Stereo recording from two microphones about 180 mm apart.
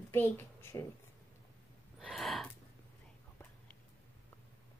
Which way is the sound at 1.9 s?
Centre (ahead or behind).